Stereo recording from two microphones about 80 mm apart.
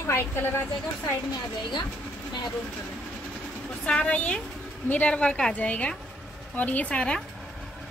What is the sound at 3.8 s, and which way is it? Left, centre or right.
A woman's voice, centre.